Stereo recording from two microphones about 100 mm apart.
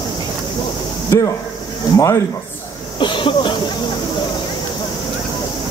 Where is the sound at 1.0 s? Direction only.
30° left (ahead or behind).